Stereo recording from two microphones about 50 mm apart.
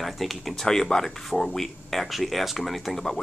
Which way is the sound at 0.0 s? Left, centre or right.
Centre.